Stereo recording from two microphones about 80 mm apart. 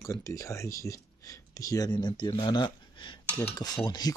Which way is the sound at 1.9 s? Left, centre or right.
Left.